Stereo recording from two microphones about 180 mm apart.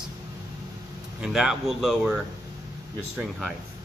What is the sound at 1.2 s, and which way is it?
Speech, 5° right (ahead or behind).